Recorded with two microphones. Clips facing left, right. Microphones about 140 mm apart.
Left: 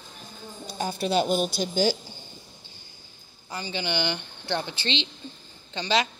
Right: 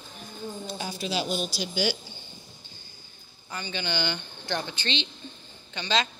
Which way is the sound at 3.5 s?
30° left (ahead or behind).